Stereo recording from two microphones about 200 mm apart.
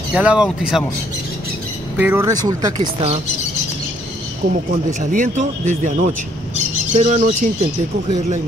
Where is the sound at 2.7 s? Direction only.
30° right (ahead or behind).